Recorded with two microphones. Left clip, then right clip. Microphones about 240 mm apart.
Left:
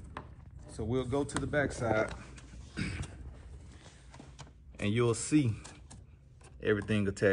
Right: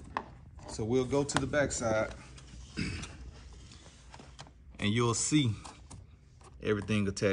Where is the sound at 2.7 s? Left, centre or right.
Centre.